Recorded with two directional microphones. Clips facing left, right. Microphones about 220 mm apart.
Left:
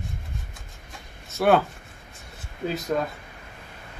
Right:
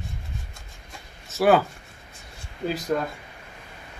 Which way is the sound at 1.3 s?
Centre (ahead or behind).